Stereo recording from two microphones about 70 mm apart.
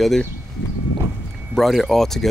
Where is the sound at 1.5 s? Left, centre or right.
Centre.